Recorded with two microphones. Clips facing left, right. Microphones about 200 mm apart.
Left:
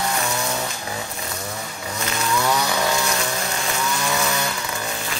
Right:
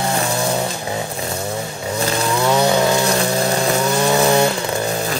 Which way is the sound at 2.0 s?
30° right (ahead or behind).